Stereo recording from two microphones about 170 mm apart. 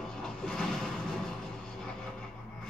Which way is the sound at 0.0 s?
5° left (ahead or behind).